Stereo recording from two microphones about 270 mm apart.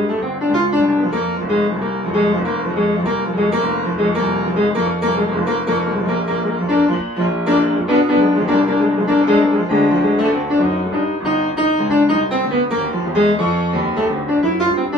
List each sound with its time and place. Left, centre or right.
8.5 s music: centre